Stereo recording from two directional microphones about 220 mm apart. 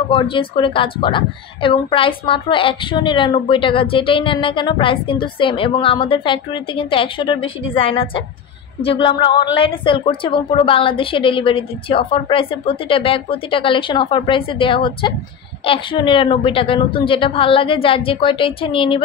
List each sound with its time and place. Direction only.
0.1 s a woman's voice: 25° left (ahead or behind)